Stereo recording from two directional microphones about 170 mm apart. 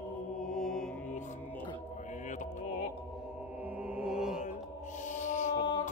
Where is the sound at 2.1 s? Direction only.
45° left (ahead or behind).